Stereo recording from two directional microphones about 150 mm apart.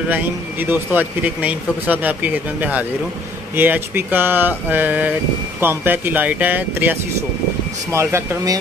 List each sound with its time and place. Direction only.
0.1 s speech: 10° right (ahead or behind)